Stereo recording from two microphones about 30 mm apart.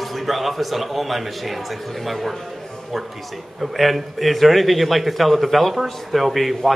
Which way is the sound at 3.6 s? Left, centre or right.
Centre.